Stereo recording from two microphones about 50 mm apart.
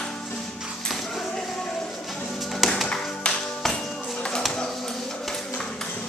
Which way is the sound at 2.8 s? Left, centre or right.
Centre.